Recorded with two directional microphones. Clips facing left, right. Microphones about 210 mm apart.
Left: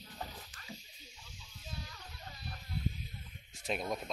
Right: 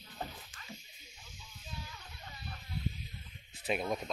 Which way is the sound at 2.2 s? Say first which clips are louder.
Even; 40° left (ahead or behind).